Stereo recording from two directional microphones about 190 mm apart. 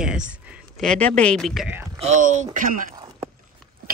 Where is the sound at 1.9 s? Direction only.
40° right (ahead or behind).